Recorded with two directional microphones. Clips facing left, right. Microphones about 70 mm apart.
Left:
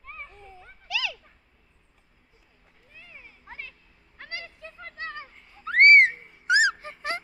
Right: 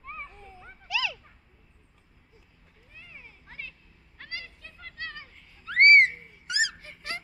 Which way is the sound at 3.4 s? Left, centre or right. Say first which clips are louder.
Left 2 dB; centre.